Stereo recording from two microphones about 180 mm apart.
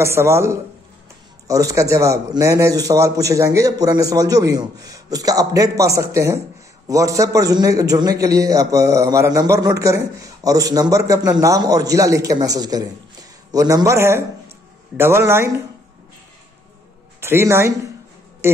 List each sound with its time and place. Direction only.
0.0 s a man's voice: 15° right (ahead or behind)
17.2 s speech: 15° right (ahead or behind)
18.4 s a sound: 15° right (ahead or behind)